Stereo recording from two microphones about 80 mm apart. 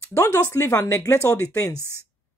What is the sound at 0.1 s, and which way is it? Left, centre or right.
Speech, left.